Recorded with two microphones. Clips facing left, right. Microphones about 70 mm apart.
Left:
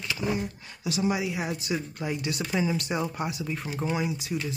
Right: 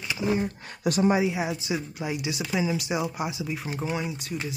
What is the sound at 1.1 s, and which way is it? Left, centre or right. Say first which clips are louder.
Speech: right 5 dB; right.